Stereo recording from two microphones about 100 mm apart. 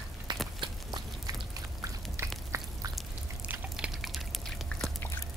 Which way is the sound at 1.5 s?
35° right (ahead or behind).